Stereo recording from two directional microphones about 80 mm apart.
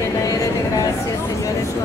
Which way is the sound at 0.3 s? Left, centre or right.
Left.